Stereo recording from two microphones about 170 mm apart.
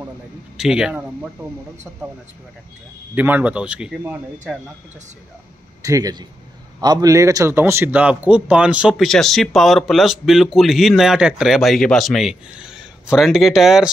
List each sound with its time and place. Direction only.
0.6 s a man's voice: 5° right (ahead or behind)
3.2 s speech: 10° right (ahead or behind)
5.8 s a man's voice: 20° right (ahead or behind); by 13.8 s centre (ahead or behind)